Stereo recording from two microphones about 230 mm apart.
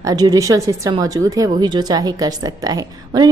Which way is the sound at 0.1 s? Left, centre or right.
Centre.